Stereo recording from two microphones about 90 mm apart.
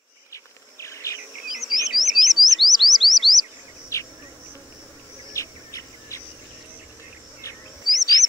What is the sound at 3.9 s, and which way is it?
Insect, 35° left (ahead or behind).